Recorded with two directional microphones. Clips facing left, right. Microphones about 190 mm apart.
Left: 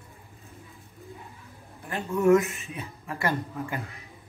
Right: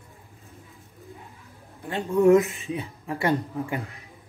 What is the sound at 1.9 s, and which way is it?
Speech, 15° right (ahead or behind).